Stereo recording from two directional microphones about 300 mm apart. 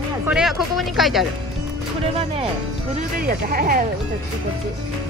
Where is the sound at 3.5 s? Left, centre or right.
Right.